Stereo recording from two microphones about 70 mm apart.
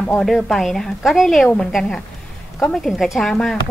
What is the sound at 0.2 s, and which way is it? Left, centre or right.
A woman's voice, centre.